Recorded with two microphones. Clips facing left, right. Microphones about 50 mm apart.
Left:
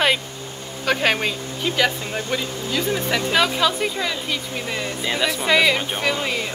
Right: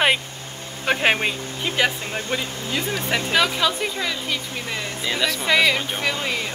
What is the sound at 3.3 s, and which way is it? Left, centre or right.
A woman's voice, centre.